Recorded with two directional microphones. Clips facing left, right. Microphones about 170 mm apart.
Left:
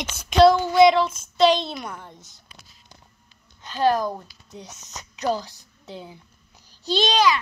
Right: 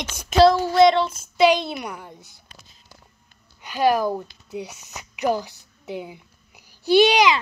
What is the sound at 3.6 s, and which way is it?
A child's voice, 10° right (ahead or behind).